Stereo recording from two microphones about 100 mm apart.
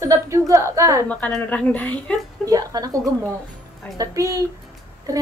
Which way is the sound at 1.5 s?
15° left (ahead or behind).